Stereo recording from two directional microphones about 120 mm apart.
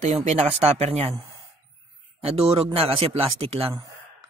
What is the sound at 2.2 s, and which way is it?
A man's voice, 55° right (ahead or behind).